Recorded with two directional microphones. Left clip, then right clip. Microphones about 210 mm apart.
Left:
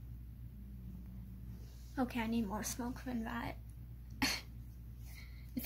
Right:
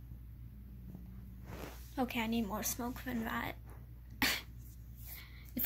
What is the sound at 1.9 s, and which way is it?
A woman's voice, centre (ahead or behind).